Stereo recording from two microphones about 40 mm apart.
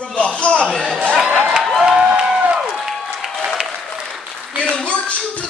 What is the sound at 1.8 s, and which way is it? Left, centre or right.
Crowd, right.